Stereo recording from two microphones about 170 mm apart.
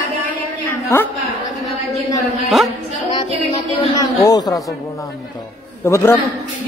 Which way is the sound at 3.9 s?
20° left (ahead or behind).